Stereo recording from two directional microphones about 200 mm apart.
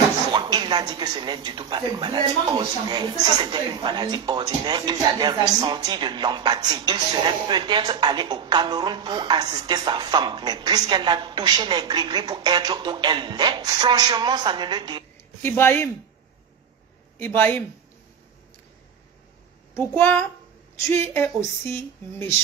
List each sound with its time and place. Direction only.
0.3 s speech: 20° right (ahead or behind)
15.4 s a child's voice: 10° left (ahead or behind)
17.2 s a child's voice: 10° left (ahead or behind)
19.7 s a child's voice: 10° left (ahead or behind)